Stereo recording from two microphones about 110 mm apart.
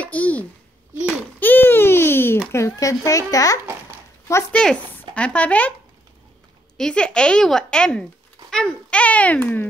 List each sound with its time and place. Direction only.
0.0 s a sound: 10° left (ahead or behind)
2.5 s a child's voice: 30° left (ahead or behind)
4.5 s a child's voice: 10° left (ahead or behind)
6.8 s a child's voice: 10° left (ahead or behind)